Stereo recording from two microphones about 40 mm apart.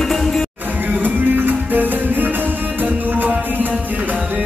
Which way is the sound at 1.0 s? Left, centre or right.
Right.